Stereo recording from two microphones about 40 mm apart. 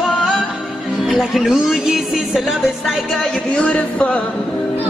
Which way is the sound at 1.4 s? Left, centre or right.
Centre.